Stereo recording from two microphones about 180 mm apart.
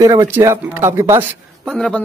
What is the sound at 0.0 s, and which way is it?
Speech, 20° right (ahead or behind).